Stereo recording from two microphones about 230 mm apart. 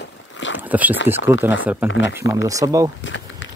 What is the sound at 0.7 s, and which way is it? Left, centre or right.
Speech, centre.